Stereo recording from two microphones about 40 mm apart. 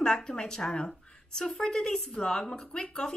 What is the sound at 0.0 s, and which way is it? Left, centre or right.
A woman's voice, left.